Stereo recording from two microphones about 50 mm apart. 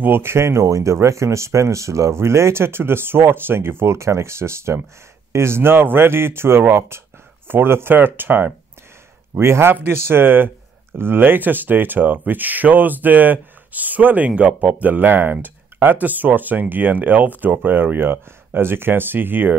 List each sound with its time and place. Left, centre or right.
0.0 s speech: right
9.3 s speech: right